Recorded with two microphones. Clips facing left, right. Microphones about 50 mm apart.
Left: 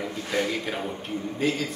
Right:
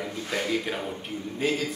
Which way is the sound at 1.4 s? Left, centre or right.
Centre.